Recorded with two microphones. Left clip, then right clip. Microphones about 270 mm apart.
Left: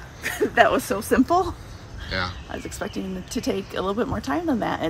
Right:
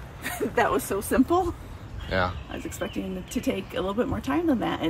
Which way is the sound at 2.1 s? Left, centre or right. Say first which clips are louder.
Right 1 dB; centre.